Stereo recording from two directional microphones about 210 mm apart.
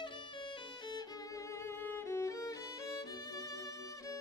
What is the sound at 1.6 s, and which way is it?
Music, 10° left (ahead or behind).